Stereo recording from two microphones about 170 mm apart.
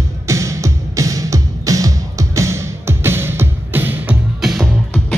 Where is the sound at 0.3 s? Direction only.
20° right (ahead or behind).